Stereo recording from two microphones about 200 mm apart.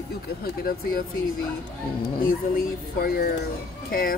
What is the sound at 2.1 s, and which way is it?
Speech, 50° left (ahead or behind).